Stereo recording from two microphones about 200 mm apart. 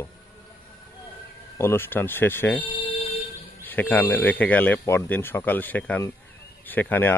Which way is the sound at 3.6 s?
10° left (ahead or behind).